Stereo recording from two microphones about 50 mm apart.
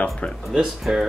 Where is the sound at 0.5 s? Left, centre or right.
Centre.